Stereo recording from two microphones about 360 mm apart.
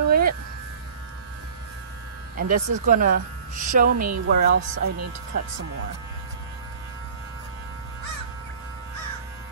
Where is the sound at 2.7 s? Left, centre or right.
Right.